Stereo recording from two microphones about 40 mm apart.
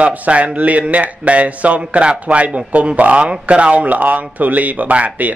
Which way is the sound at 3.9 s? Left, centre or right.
Right.